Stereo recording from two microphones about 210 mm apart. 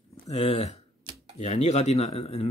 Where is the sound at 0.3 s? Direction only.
30° left (ahead or behind).